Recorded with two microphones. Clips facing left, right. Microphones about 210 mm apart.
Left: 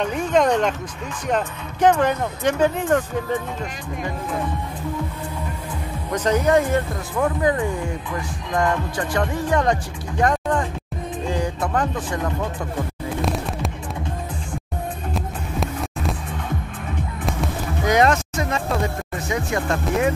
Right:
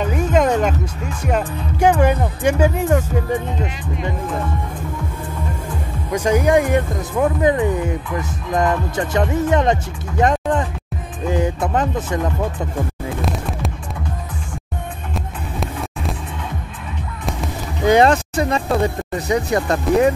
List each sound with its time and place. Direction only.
0.0 s music: 5° right (ahead or behind)
1.2 s speech: 10° right (ahead or behind)
6.1 s speech: 10° right (ahead or behind)
11.2 s music: 20° right (ahead or behind)
13.2 s music: centre (ahead or behind)
15.1 s music: centre (ahead or behind)
17.8 s music: 30° right (ahead or behind)